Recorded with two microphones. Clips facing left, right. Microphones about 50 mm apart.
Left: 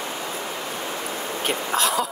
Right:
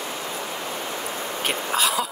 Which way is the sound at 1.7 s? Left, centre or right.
Centre.